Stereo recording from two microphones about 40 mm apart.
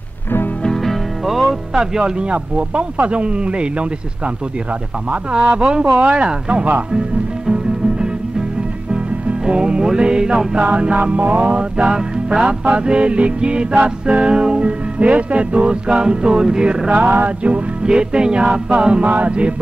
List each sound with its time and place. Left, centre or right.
0.8 s music: centre
1.7 s music: centre
5.3 s music: right
5.9 s music: right
9.5 s music: right
19.0 s music: right